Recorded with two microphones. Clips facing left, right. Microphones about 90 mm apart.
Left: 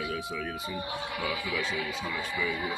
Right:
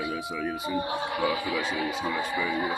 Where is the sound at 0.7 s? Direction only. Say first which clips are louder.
Right 6 dB; 35° right (ahead or behind).